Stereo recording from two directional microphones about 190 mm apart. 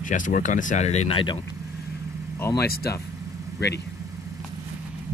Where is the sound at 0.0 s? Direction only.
45° left (ahead or behind); by 1.4 s 25° left (ahead or behind).